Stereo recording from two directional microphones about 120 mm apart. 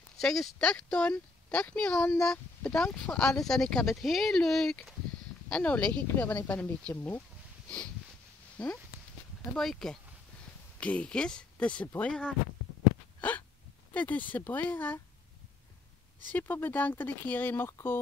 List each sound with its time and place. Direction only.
0.2 s speech: centre (ahead or behind)
8.6 s speech: 10° left (ahead or behind)
13.9 s speech: 15° left (ahead or behind)
16.3 s speech: 15° left (ahead or behind)